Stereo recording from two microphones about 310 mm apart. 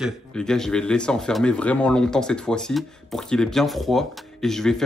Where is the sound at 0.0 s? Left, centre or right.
Centre.